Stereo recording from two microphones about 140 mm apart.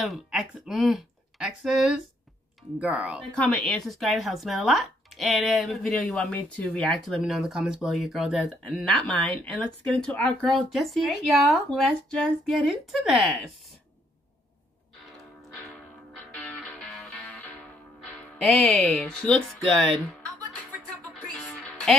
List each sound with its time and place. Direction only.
0.0 s speech: centre (ahead or behind)
3.3 s speech: 5° left (ahead or behind)
16.3 s music: centre (ahead or behind)
18.4 s speech: centre (ahead or behind)
21.1 s music: 5° left (ahead or behind)